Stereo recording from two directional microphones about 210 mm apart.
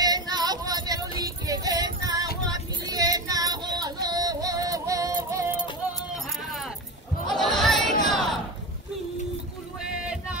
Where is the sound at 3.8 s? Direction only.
20° right (ahead or behind).